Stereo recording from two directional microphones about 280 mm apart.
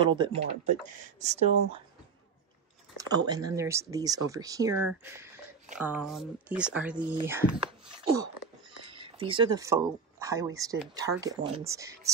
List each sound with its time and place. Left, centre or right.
0.0 s speech: centre
3.0 s speech: centre